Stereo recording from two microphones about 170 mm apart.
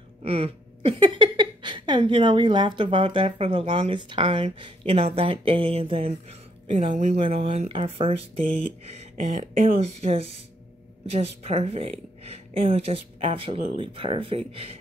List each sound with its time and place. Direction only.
0.2 s speech: 35° right (ahead or behind)
9.1 s speech: 45° right (ahead or behind); by 14.4 s 30° right (ahead or behind)